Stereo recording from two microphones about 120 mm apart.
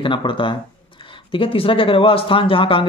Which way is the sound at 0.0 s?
45° left (ahead or behind).